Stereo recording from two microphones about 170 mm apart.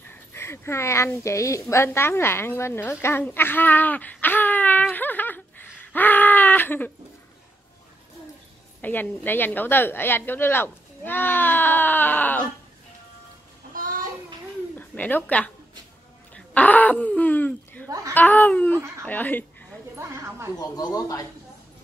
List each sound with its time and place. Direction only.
0.0 s a sound: 15° left (ahead or behind)
8.8 s a woman's voice: 10° left (ahead or behind)
13.7 s child singing: 55° right (ahead or behind)
14.8 s speech: 10° left (ahead or behind)
16.3 s throat clearing: 10° left (ahead or behind)
17.8 s speech: 20° right (ahead or behind)
18.1 s speech: 10° left (ahead or behind)
20.0 s a sound: 15° right (ahead or behind)
20.5 s speech: 20° left (ahead or behind)